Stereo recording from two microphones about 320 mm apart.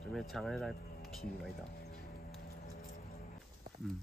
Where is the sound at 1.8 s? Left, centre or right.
Left.